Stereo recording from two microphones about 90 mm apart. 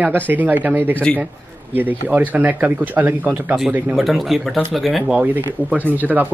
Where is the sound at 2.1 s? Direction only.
20° right (ahead or behind).